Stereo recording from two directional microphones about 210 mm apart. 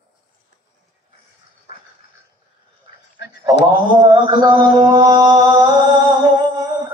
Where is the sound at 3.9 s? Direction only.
20° right (ahead or behind).